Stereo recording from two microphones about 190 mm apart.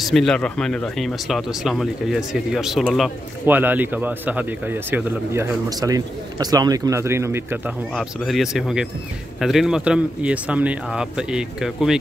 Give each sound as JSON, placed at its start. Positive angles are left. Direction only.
{"t": 0.0, "sound": "a man's voice", "side_deg": 0}
{"t": 7.9, "sound": "speech", "side_deg": 0}